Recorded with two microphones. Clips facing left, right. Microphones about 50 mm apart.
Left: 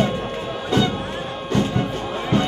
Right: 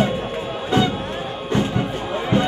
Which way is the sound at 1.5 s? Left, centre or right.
Centre.